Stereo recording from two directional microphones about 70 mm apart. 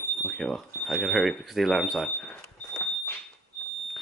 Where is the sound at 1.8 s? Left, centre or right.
Centre.